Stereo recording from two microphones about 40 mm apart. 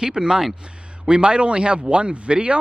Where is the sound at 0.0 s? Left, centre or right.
Centre.